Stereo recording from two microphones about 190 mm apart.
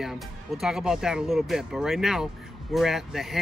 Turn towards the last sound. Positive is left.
turn(degrees=0)  # may be behind; listen again after turning